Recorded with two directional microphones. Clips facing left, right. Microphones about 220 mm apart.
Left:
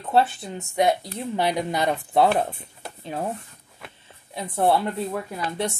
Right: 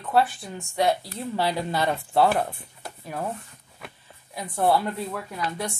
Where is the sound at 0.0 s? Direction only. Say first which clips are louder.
Left 2 dB; 25° left (ahead or behind).